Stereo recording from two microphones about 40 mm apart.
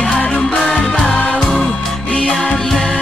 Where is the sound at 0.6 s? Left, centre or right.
Centre.